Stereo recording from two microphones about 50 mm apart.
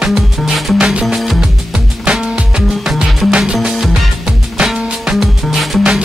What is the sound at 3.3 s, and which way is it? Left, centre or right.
Music, centre.